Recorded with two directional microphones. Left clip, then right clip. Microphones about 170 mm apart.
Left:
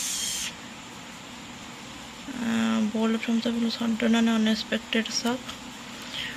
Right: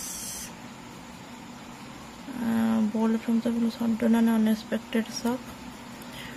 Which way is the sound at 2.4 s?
15° right (ahead or behind).